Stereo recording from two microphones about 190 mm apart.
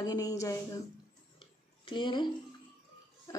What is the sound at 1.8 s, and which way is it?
Speech, 25° left (ahead or behind).